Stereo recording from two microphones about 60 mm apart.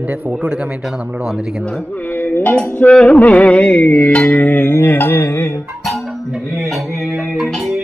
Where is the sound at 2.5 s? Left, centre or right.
Left.